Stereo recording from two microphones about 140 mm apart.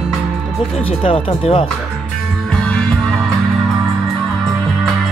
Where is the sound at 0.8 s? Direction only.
40° left (ahead or behind).